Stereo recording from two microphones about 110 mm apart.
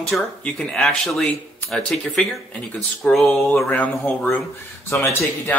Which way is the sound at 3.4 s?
20° left (ahead or behind).